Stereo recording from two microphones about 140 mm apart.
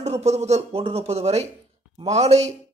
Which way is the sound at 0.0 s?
50° right (ahead or behind).